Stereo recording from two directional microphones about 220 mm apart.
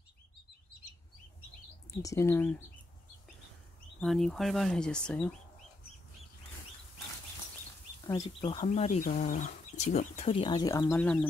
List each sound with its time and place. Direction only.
2.0 s speech: 15° left (ahead or behind)
4.0 s speech: centre (ahead or behind)
8.1 s speech: 20° left (ahead or behind)
10.9 s speech: 5° left (ahead or behind)